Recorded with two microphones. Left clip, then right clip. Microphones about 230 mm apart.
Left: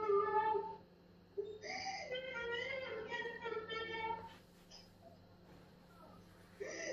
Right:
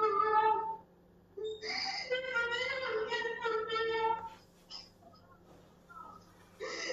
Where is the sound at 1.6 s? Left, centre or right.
Right.